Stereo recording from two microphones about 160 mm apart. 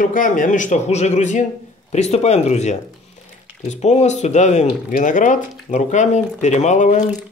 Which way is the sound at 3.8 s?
45° left (ahead or behind).